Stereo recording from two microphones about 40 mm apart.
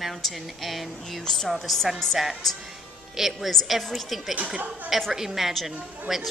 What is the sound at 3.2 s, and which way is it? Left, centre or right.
A woman's voice, centre.